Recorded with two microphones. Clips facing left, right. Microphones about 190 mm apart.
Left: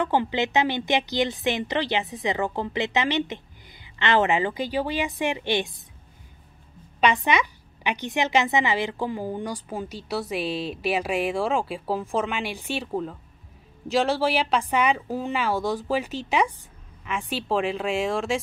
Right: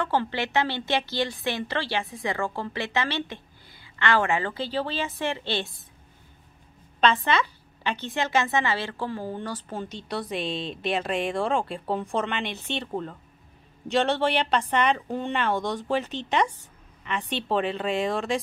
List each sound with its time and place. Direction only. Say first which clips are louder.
0.0 s a woman's voice: left 3 dB; 15° left (ahead or behind)
7.0 s a woman's voice: left 1 dB; 15° left (ahead or behind)